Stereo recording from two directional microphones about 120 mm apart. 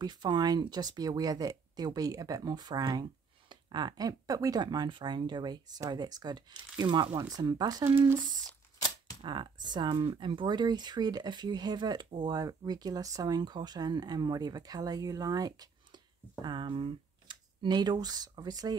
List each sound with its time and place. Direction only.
0.0 s speech: 35° right (ahead or behind)
9.2 s speech: 40° right (ahead or behind)
16.3 s speech: 40° right (ahead or behind)